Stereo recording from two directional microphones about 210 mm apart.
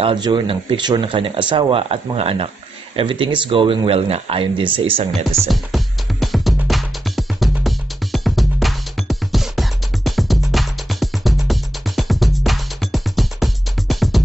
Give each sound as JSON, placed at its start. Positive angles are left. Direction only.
{"t": 0.0, "sound": "speech", "side_deg": -20}
{"t": 5.5, "sound": "music", "side_deg": 0}